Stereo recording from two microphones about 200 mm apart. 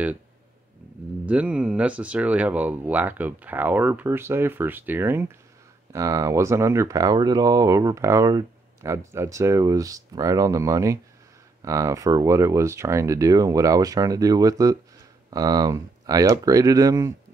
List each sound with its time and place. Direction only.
1.2 s speech: 5° right (ahead or behind)